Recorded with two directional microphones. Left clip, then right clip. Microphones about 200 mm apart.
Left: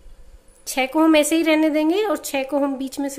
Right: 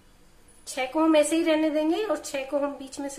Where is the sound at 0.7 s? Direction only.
40° left (ahead or behind).